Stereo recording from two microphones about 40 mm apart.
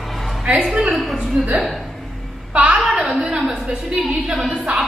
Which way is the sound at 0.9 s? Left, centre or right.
Centre.